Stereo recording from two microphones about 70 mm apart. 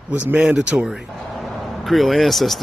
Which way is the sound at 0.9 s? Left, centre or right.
Centre.